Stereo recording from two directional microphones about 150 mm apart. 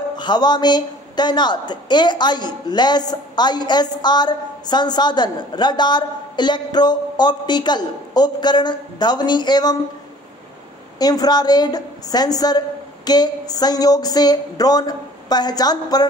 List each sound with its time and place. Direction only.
0.2 s a woman's voice: 30° left (ahead or behind)
11.0 s a woman's voice: 25° left (ahead or behind)